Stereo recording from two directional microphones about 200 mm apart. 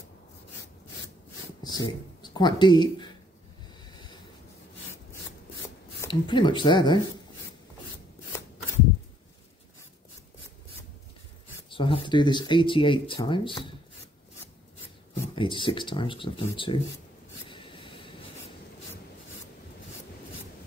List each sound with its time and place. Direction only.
1.6 s speech: 20° left (ahead or behind)
5.9 s speech: 20° left (ahead or behind)
11.7 s speech: 25° left (ahead or behind)
15.3 s speech: 25° left (ahead or behind)
17.5 s a sound: 25° left (ahead or behind)